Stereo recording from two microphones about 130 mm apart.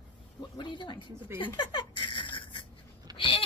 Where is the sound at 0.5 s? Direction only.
35° left (ahead or behind).